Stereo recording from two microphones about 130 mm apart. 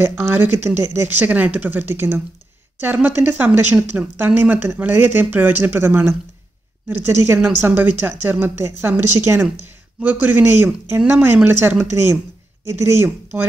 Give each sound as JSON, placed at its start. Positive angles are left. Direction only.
{"t": 0.0, "sound": "speech", "side_deg": -15}
{"t": 7.6, "sound": "speech", "side_deg": -15}